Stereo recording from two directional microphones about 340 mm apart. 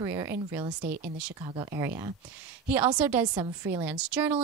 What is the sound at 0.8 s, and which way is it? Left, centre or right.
Speech, right.